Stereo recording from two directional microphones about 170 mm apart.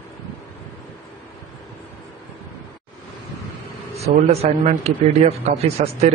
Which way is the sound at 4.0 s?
40° right (ahead or behind).